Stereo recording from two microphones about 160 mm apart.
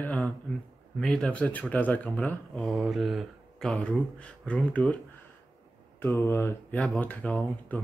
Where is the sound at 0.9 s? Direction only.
5° left (ahead or behind).